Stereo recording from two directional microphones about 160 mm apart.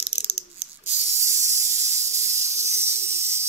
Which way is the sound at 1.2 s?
15° right (ahead or behind).